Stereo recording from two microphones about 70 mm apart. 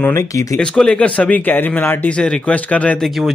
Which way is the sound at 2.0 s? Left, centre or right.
Centre.